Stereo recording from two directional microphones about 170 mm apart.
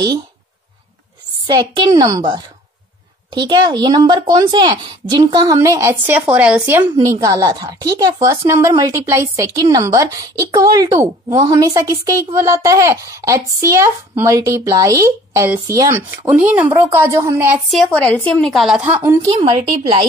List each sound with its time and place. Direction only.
1.5 s a woman's voice: 25° right (ahead or behind)
17.6 s a woman's voice: centre (ahead or behind)
19.0 s speech: 15° right (ahead or behind)
19.4 s a woman's voice: 30° right (ahead or behind)